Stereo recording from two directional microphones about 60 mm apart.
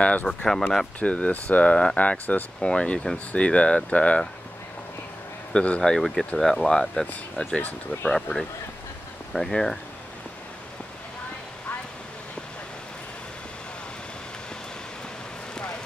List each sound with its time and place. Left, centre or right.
0.0 s speech: left
0.5 s speech: centre
0.9 s speech: left
5.5 s speech: centre
7.4 s speech: left
8.1 s speech: centre